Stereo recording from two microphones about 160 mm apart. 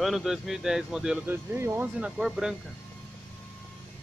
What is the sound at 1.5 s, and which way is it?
Speech, 15° right (ahead or behind).